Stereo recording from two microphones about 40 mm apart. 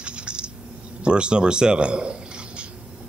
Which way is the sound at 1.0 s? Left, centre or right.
Right.